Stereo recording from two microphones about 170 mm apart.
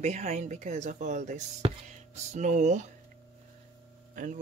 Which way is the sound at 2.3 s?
45° right (ahead or behind).